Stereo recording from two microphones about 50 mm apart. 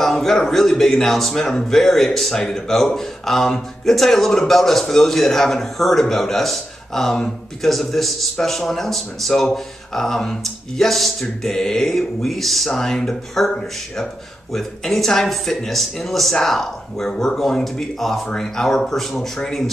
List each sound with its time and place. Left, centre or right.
0.0 s a man's voice: centre